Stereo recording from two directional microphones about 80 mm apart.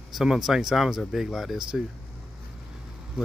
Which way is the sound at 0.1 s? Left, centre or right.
Centre.